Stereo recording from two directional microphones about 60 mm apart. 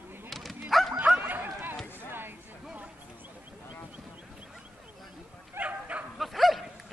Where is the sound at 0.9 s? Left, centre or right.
Right.